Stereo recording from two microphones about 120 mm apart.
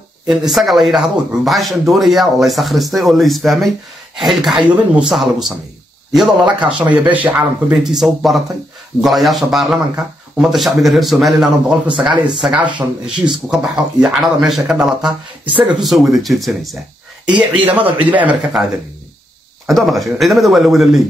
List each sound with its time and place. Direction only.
0.3 s a man's voice: centre (ahead or behind)
15.0 s speech: 35° right (ahead or behind)
15.6 s a man's voice: centre (ahead or behind)
17.6 s a man's voice: 45° right (ahead or behind)
18.1 s speech: 10° right (ahead or behind)
19.7 s a man's voice: centre (ahead or behind)